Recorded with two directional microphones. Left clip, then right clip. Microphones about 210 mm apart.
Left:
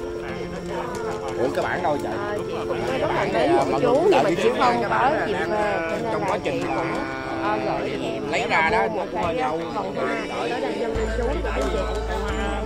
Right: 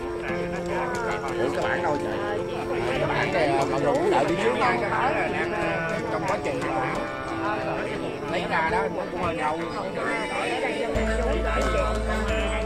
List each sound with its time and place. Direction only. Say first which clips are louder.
3.1 s speech: left 4 dB; 50° left (ahead or behind)
8.5 s speech: left 4 dB; 50° left (ahead or behind)